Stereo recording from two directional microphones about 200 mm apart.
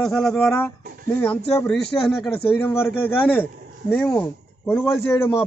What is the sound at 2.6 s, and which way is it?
A man's voice, 10° left (ahead or behind).